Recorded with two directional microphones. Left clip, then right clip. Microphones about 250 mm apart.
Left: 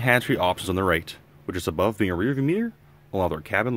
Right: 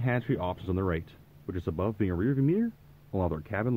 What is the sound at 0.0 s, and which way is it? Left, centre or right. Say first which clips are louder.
Speech: left 10 dB; left.